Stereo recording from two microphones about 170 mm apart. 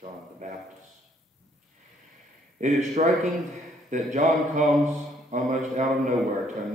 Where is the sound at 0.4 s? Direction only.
45° right (ahead or behind).